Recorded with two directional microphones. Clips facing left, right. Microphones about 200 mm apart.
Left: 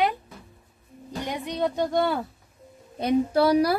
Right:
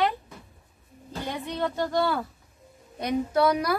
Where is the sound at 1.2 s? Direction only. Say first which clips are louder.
Left 2 dB; 15° left (ahead or behind).